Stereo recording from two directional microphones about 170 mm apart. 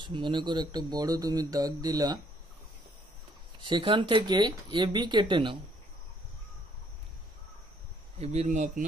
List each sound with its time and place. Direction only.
0.0 s speech: 30° right (ahead or behind)
3.6 s speech: 30° right (ahead or behind)
8.2 s speech: 40° right (ahead or behind)